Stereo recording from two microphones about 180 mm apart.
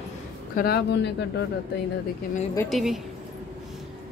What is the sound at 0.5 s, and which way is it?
Speech, 60° left (ahead or behind).